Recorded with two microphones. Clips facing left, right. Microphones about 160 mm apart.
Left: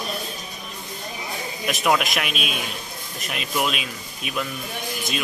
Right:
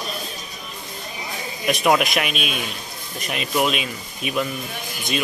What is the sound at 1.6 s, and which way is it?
Speech, centre (ahead or behind).